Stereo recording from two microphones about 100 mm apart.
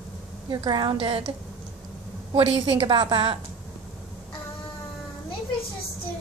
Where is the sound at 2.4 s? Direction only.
60° right (ahead or behind).